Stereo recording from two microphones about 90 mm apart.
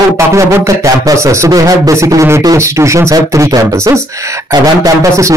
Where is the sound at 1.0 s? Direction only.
35° right (ahead or behind).